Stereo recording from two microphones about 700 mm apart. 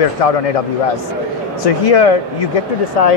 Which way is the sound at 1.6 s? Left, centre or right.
Left.